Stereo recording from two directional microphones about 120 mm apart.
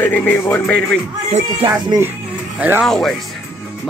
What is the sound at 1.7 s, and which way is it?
Speech, 25° right (ahead or behind).